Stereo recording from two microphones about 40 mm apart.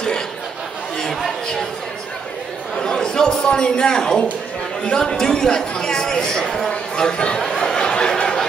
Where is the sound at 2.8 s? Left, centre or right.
Centre.